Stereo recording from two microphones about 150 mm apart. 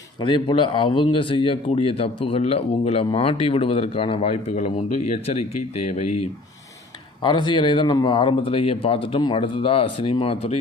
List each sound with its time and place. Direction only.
0.2 s a man's voice: 35° left (ahead or behind)
7.2 s a man's voice: 30° left (ahead or behind)